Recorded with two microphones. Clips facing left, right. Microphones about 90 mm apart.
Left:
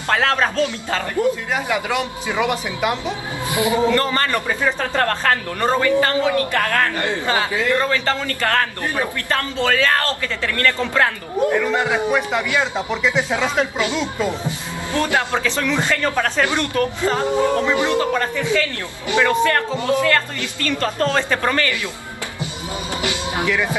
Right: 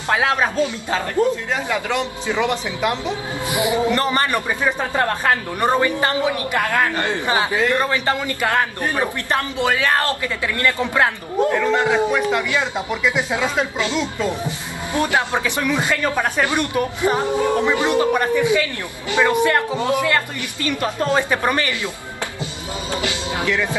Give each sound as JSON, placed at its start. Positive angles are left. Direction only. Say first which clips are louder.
{"t": 0.1, "sound": "a man's voice", "louder": "even", "side_deg": -10}
{"t": 1.5, "sound": "speech", "louder": "left 1 dB", "side_deg": 10}
{"t": 3.4, "sound": "a man's voice", "louder": "left 1 dB", "side_deg": -20}
{"t": 12.1, "sound": "speech", "louder": "even", "side_deg": 5}
{"t": 12.7, "sound": "speech", "louder": "left 1 dB", "side_deg": -5}
{"t": 13.7, "sound": "speech", "louder": "left 1 dB", "side_deg": 15}
{"t": 15.0, "sound": "a man's voice", "louder": "even", "side_deg": -20}
{"t": 23.0, "sound": "music", "louder": "left 2 dB", "side_deg": 20}